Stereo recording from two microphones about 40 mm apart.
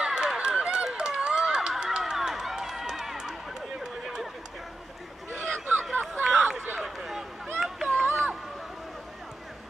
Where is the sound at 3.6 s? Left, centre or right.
Centre.